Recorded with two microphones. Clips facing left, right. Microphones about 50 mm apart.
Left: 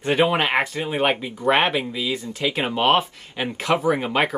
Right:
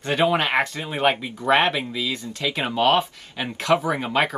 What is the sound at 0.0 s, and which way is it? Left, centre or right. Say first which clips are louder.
Speech: left 1 dB; centre.